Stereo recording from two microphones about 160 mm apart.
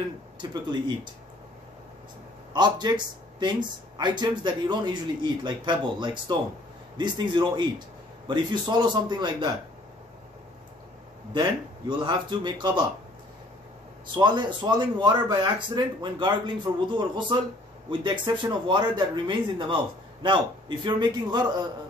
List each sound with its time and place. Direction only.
0.4 s speech: 25° right (ahead or behind)
2.5 s speech: 25° right (ahead or behind)
12.0 s speech: 30° right (ahead or behind)
14.1 s speech: 30° right (ahead or behind)